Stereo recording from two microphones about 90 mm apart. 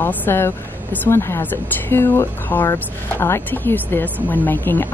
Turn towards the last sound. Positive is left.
turn(degrees=20)  # may be behind; listen again after turning